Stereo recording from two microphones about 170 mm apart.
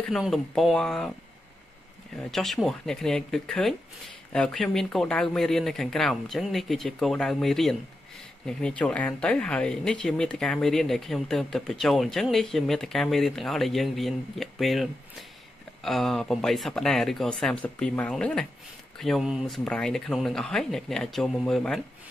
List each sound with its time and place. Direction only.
0.1 s speech: centre (ahead or behind)
2.1 s speech: centre (ahead or behind)